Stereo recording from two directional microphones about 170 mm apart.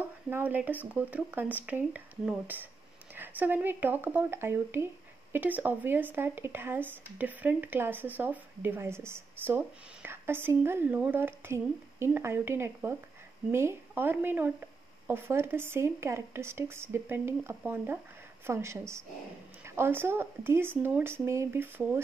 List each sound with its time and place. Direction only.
0.3 s speech: 10° right (ahead or behind)